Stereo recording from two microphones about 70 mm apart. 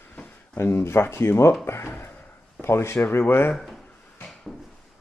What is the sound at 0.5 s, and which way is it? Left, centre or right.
Speech, left.